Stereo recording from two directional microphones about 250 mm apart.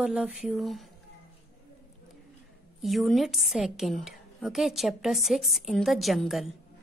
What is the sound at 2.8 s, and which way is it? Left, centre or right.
A woman's voice, centre.